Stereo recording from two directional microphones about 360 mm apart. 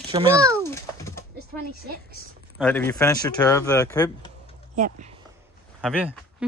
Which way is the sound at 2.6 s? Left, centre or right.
Centre.